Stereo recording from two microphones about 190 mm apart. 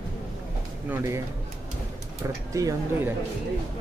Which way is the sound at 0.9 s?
15° right (ahead or behind).